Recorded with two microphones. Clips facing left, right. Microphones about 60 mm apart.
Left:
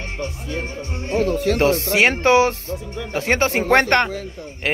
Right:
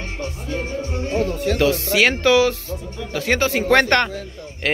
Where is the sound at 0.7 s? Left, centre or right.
Left.